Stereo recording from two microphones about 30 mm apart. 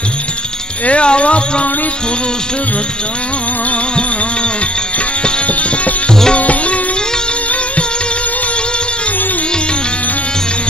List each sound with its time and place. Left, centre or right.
0.8 s speech: left
5.5 s music: left